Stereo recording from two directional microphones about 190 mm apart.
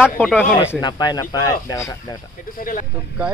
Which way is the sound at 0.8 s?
20° left (ahead or behind).